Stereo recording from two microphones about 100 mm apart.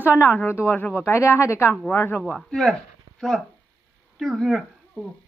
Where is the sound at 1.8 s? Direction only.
15° left (ahead or behind).